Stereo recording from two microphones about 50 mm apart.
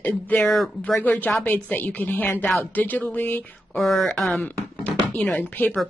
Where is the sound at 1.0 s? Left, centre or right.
Left.